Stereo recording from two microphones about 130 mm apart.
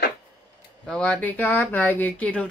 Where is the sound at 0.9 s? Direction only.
5° left (ahead or behind).